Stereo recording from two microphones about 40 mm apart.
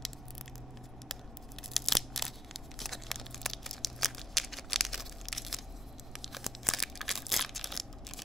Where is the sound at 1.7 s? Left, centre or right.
Centre.